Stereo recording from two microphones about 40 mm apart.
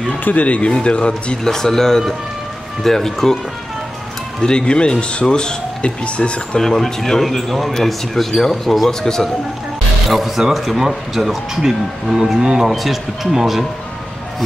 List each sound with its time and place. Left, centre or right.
0.2 s speech: left
0.7 s speech: left
1.4 s speech: centre
4.4 s speech: left
6.6 s speech: centre
10.0 s speech: centre
12.7 s speech: centre